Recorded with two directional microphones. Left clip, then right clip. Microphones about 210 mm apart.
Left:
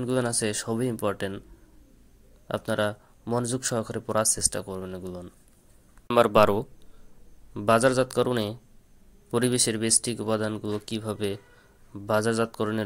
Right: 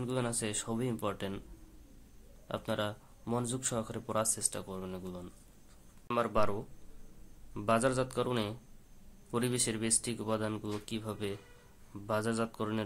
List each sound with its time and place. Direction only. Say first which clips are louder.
0.0 s speech: left 9 dB; 25° left (ahead or behind)
2.4 s speech: left 9 dB; 25° left (ahead or behind)
6.0 s a man's voice: left 12 dB; 35° left (ahead or behind)